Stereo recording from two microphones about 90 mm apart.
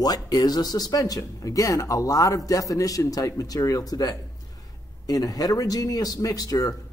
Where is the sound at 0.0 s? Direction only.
45° left (ahead or behind).